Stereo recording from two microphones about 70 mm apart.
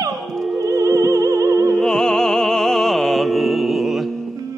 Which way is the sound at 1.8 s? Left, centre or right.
Centre.